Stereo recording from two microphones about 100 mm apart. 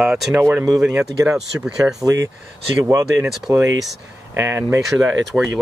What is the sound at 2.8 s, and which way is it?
Speech, 30° right (ahead or behind).